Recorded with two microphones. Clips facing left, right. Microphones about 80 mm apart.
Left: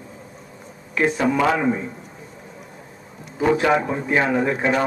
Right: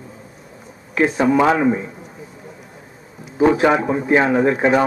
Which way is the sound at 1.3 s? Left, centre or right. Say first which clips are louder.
Right 4 dB; centre.